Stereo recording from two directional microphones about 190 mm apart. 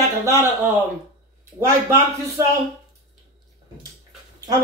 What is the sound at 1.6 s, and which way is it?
Speech, 15° right (ahead or behind).